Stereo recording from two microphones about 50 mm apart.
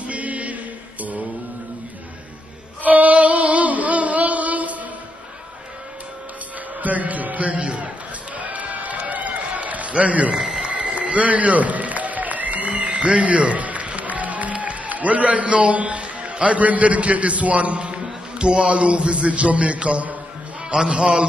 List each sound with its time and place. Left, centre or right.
0.0 s mantra: right
2.8 s music: right
6.8 s a man's voice: right
8.4 s a sound: right
10.3 s a sound: centre
10.7 s a man's voice: right